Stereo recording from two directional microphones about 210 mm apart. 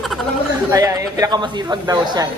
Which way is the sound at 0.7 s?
15° right (ahead or behind).